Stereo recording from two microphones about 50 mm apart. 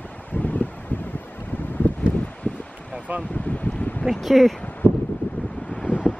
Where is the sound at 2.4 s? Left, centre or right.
Left.